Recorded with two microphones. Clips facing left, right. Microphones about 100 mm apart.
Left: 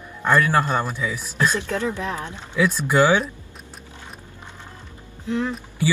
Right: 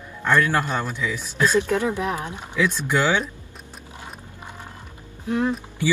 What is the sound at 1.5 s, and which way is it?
Speech, 15° right (ahead or behind).